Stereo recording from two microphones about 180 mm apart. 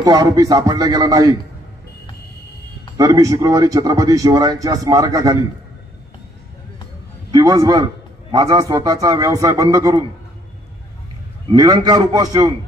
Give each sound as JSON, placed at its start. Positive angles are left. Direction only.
{"t": 0.0, "sound": "a man's voice", "side_deg": -20}
{"t": 3.0, "sound": "a man's voice", "side_deg": -20}
{"t": 7.2, "sound": "a man's voice", "side_deg": -20}
{"t": 11.5, "sound": "a man's voice", "side_deg": -20}